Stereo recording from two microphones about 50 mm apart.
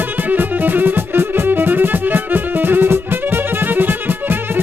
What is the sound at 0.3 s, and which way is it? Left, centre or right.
Violin, right.